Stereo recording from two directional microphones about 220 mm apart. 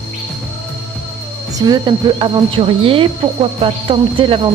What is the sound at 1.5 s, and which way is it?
Speech, 20° right (ahead or behind).